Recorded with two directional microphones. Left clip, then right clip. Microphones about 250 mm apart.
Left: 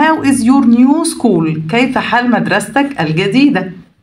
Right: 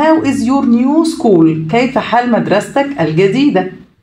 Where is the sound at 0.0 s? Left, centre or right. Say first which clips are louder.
Even; left.